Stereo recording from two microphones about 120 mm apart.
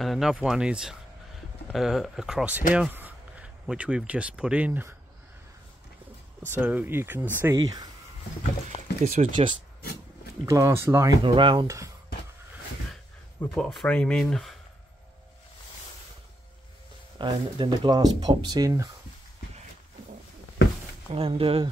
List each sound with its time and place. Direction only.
0.0 s speech: centre (ahead or behind)
6.4 s speech: 15° right (ahead or behind)
7.5 s speech: 35° right (ahead or behind)
8.6 s speech: 65° right (ahead or behind)
10.4 s speech: 25° right (ahead or behind)
11.2 s speech: 45° right (ahead or behind)
11.6 s speech: 25° right (ahead or behind)
13.6 s speech: centre (ahead or behind)
17.2 s speech: 40° right (ahead or behind)
21.1 s speech: 50° right (ahead or behind)